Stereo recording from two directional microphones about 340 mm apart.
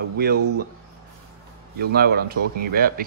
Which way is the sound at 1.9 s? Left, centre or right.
Right.